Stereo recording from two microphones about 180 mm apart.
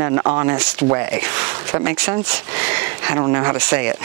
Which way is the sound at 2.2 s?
5° right (ahead or behind).